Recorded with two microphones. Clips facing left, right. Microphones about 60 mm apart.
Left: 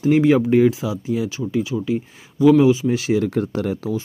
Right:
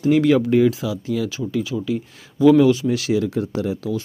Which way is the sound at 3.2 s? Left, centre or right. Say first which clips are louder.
Left 1 dB; left.